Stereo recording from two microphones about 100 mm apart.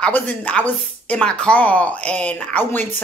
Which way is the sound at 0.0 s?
10° left (ahead or behind).